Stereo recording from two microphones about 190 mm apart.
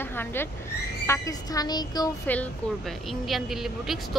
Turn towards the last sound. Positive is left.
turn(degrees=0)  # may be behind; listen again after turning